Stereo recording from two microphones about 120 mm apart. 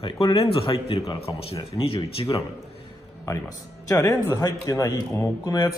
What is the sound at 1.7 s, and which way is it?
Speech, 50° left (ahead or behind).